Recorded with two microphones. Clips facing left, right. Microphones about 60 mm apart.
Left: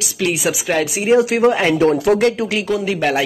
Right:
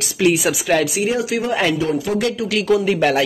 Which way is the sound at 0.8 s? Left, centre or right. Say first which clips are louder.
Left 5 dB; left.